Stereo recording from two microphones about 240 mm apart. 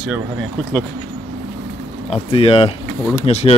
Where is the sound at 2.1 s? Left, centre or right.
Left.